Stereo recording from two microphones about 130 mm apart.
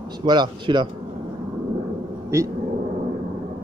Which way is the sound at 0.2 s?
35° right (ahead or behind).